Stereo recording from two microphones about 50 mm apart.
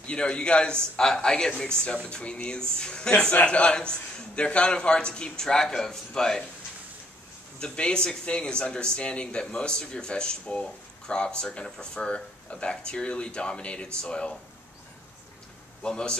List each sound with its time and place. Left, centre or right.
0.0 s a man's voice: centre
7.5 s speech: left
15.8 s a man's voice: centre